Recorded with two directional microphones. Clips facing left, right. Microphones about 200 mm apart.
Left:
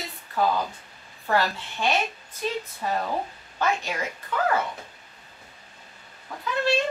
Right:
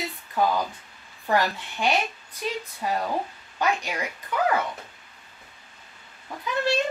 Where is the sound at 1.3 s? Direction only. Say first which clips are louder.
Right 1 dB; 15° right (ahead or behind).